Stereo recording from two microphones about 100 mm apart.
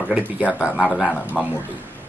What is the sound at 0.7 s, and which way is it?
Speech, 10° left (ahead or behind).